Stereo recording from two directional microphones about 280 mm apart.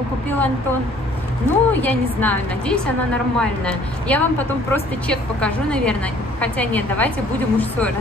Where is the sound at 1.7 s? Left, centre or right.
Centre.